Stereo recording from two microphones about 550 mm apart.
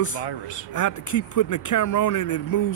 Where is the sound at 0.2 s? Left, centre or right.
Left.